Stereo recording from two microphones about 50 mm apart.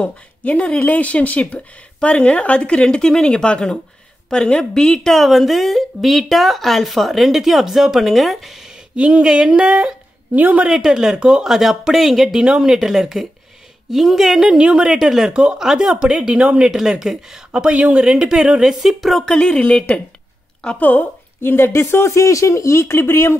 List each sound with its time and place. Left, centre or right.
0.0 s a woman's voice: left
5.1 s a woman's voice: centre
8.9 s speech: right
10.3 s a woman's voice: right
10.7 s speech: centre
11.4 s speech: centre
16.7 s speech: centre
17.5 s speech: right; by 19.2 s centre
19.2 s a woman's voice: centre
19.6 s speech: left
21.4 s speech: left